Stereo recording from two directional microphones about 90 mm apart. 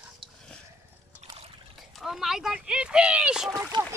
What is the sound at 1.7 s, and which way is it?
Speech, centre (ahead or behind).